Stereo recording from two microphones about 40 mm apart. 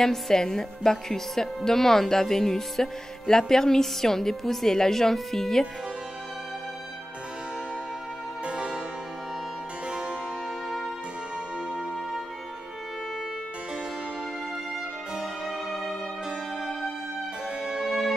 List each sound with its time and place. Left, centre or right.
0.0 s music: centre
8.5 s harpsichord: right
9.8 s music: right
15.1 s music: centre
17.8 s music: centre